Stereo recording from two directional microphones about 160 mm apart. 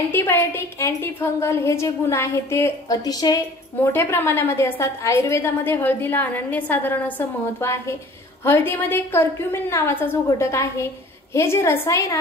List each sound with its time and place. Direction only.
0.1 s a woman's voice: 15° left (ahead or behind)